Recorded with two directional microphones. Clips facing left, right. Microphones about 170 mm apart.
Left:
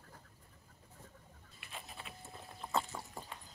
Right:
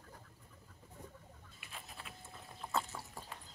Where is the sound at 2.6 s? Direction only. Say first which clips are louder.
Left 2 dB; 5° right (ahead or behind).